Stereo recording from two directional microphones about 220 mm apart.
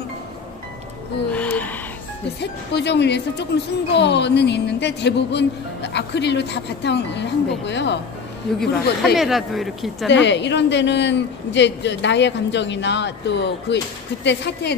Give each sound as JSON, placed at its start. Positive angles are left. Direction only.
{"t": 1.3, "sound": "a sound", "side_deg": 5}
{"t": 2.4, "sound": "speech", "side_deg": 50}
{"t": 8.5, "sound": "speech", "side_deg": 0}
{"t": 10.0, "sound": "speech", "side_deg": 55}